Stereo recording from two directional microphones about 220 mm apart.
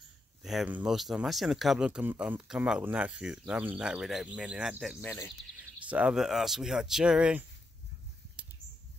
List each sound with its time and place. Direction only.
0.4 s speech: centre (ahead or behind)
5.0 s speech: 10° left (ahead or behind)
5.9 s speech: 5° right (ahead or behind)